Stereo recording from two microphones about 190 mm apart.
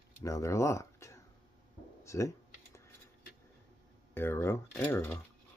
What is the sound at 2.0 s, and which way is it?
Computer keyboard, 15° left (ahead or behind).